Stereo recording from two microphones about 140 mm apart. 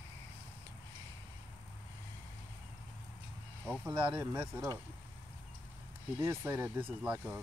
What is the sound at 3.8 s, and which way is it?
Speech, 20° right (ahead or behind).